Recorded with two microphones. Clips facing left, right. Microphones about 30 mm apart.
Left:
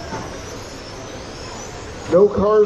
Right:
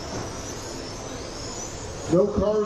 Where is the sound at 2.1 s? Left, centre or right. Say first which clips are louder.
Left 8 dB; left.